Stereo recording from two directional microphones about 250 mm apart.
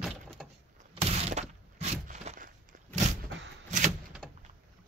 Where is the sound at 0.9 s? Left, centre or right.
Right.